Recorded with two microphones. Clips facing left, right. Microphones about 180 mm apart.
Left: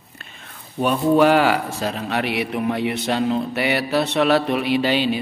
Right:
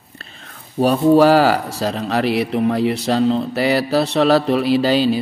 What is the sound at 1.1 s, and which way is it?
Speech, 35° right (ahead or behind).